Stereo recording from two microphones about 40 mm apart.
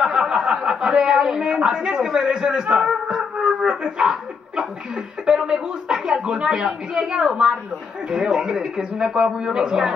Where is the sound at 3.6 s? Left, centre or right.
Right.